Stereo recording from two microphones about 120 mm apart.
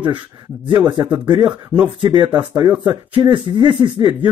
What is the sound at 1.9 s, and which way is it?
Speech, 40° right (ahead or behind).